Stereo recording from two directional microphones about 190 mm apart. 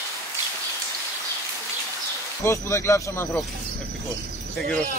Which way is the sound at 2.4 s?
15° left (ahead or behind).